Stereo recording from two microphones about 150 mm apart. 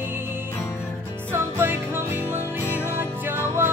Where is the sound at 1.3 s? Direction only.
15° right (ahead or behind).